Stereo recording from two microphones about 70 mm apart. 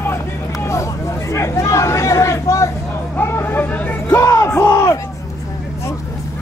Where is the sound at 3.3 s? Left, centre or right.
Left.